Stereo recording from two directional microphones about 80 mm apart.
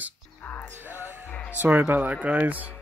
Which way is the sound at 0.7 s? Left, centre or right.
Right.